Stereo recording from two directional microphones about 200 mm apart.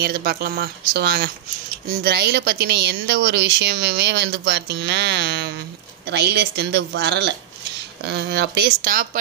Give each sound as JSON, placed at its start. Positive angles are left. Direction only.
{"t": 0.0, "sound": "a woman's voice", "side_deg": -50}